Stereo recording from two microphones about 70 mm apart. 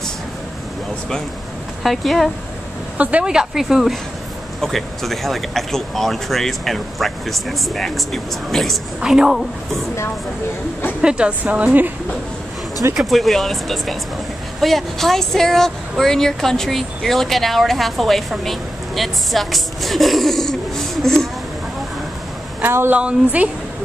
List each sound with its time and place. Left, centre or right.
1.8 s speech: centre
3.0 s speech: centre
9.0 s speech: centre
11.0 s speech: centre
12.9 s a woman's voice: centre
22.6 s a woman's voice: right
22.9 s a woman's voice: centre